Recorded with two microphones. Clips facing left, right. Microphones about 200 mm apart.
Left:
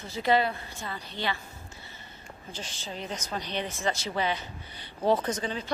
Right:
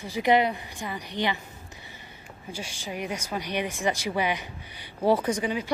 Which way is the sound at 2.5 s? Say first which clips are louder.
Right 4 dB; 10° right (ahead or behind).